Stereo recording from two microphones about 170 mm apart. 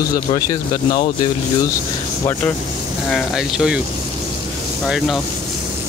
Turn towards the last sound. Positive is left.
turn(degrees=0)  # may be behind; listen again after turning